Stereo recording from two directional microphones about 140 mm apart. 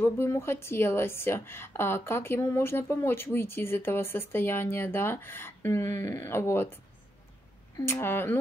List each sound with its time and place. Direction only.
0.0 s a woman's voice: 15° left (ahead or behind)
7.8 s a woman's voice: 15° left (ahead or behind)